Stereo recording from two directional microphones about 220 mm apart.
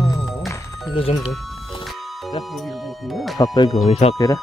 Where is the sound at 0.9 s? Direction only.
25° left (ahead or behind).